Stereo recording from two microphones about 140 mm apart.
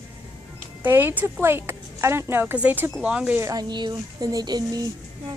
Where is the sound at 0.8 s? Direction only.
15° right (ahead or behind).